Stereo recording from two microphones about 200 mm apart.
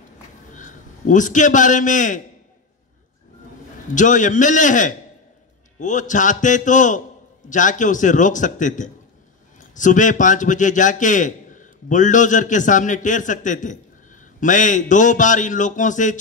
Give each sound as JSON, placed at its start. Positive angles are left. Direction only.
{"t": 0.5, "sound": "a man's voice", "side_deg": 40}
{"t": 3.9, "sound": "a man's voice", "side_deg": 40}